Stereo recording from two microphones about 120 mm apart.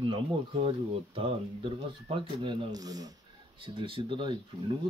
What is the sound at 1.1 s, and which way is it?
Speech, 50° right (ahead or behind).